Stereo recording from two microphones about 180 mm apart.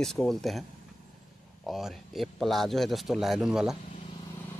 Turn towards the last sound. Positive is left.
turn(degrees=-5)  # may be behind; listen again after turning